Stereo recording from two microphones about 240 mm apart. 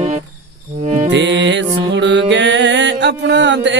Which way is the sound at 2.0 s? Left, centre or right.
Right.